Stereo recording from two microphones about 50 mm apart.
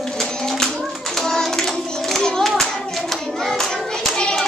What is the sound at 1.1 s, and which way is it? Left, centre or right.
Hands, centre.